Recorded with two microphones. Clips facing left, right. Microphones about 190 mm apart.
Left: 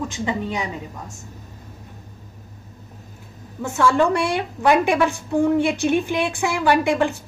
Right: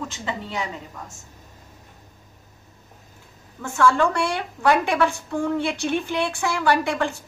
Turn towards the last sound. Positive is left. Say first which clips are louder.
# left 3 dB
turn(degrees=15)  # may be behind; listen again after turning